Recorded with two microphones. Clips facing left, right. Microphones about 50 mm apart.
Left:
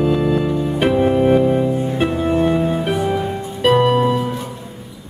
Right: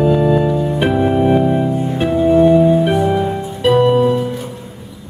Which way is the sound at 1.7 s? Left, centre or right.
Centre.